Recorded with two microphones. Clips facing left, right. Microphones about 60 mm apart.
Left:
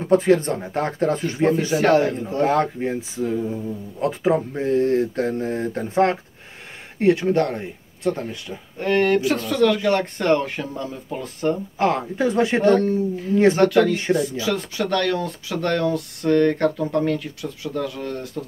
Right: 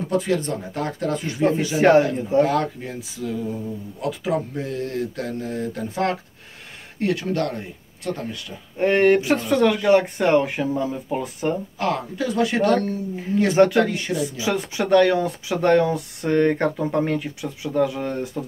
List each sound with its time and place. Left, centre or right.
0.1 s speech: left
1.8 s speech: right
2.4 s speech: left
8.7 s speech: right
11.8 s speech: left
13.6 s speech: right
13.9 s speech: left
14.3 s speech: centre